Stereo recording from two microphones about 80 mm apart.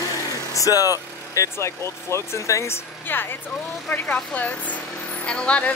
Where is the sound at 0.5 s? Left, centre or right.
Left.